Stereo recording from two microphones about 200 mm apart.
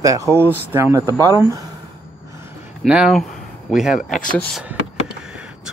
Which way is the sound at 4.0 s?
40° left (ahead or behind).